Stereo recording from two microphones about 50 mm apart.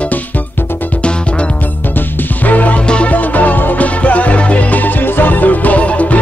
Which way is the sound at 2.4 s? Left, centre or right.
Left.